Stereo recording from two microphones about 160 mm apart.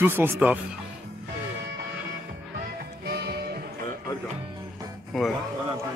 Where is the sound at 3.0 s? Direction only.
85° right.